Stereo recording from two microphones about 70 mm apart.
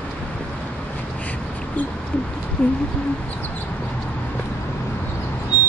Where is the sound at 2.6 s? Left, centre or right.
Centre.